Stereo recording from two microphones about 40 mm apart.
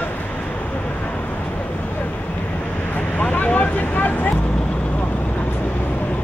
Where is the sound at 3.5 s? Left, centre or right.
Left.